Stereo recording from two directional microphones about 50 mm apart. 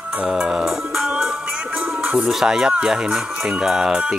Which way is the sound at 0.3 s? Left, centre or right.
Centre.